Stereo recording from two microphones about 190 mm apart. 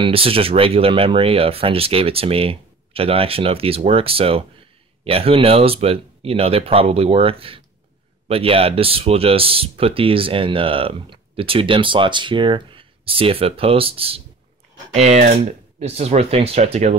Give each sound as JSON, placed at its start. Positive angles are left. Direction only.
{"t": 0.0, "sound": "speech", "side_deg": -30}